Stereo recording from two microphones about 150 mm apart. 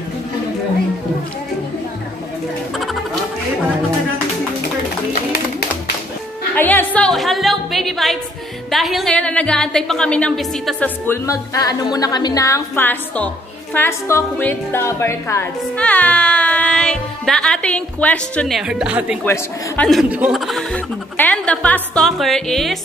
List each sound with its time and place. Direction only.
6.5 s music: 10° left (ahead or behind)
8.6 s speech: centre (ahead or behind)
11.1 s a woman's voice: 20° left (ahead or behind)
18.6 s speech: 5° right (ahead or behind)
19.2 s a woman's voice: 15° left (ahead or behind)
19.9 s speech: 5° right (ahead or behind)